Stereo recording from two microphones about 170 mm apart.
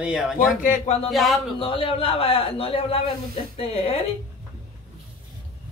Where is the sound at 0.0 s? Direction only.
5° right (ahead or behind).